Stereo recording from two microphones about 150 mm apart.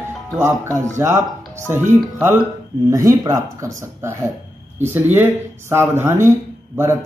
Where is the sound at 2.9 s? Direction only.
20° right (ahead or behind).